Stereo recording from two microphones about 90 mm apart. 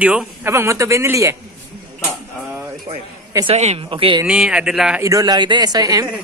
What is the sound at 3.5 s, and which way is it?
Speech, 85° right.